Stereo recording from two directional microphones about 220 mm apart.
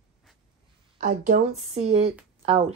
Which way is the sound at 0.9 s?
35° right (ahead or behind).